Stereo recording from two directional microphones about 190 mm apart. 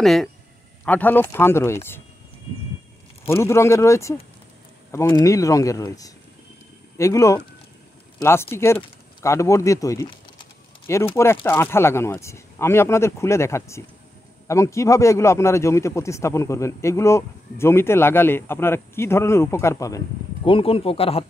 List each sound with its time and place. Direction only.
0.0 s a man's voice: centre (ahead or behind)
3.3 s a man's voice: 15° left (ahead or behind)
20.4 s speech: 30° left (ahead or behind)